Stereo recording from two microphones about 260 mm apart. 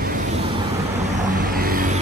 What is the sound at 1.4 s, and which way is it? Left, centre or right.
Vehicle, right.